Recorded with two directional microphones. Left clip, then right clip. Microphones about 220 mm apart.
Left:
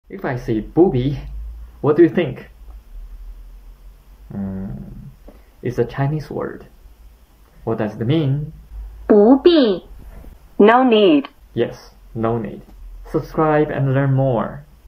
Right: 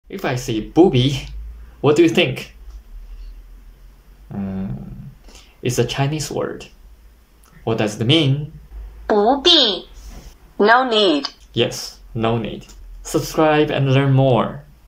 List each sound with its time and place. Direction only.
0.1 s speech: 10° right (ahead or behind)
4.3 s a sound: 15° right (ahead or behind)
5.6 s speech: 10° right (ahead or behind)
7.6 s speech: 10° right (ahead or behind)
9.0 s speech: 30° left (ahead or behind)
10.6 s speech: 10° left (ahead or behind)
11.5 s speech: 10° right (ahead or behind)